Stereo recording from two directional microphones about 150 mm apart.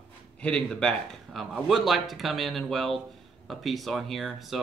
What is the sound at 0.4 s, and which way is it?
Speech, 5° left (ahead or behind).